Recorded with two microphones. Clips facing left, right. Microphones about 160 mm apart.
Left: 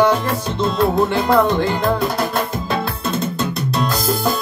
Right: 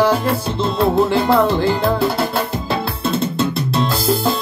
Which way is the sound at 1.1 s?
30° right (ahead or behind).